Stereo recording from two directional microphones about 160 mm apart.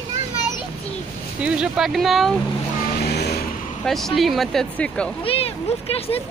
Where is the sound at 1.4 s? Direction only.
5° right (ahead or behind).